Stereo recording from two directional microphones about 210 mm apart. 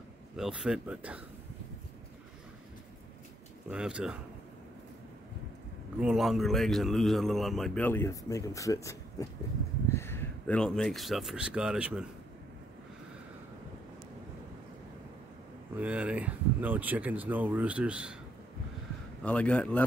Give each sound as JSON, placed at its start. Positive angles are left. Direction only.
{"t": 0.4, "sound": "a man's voice", "side_deg": -5}
{"t": 3.7, "sound": "a man's voice", "side_deg": -5}
{"t": 5.9, "sound": "a man's voice", "side_deg": -5}
{"t": 15.7, "sound": "speech", "side_deg": -5}
{"t": 19.2, "sound": "a man's voice", "side_deg": 5}